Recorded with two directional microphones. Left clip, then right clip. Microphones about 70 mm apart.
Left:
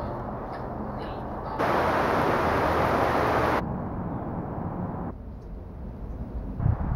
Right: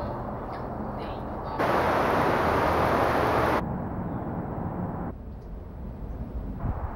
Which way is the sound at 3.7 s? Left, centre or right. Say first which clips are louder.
Even; right.